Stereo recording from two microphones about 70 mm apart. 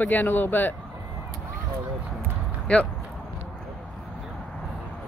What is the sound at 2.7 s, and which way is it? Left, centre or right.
Speech, centre.